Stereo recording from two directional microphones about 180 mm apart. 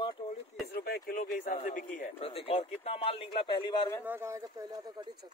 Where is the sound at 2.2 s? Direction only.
30° left (ahead or behind).